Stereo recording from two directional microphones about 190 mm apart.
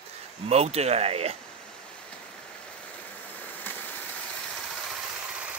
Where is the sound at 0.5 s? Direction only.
35° right (ahead or behind).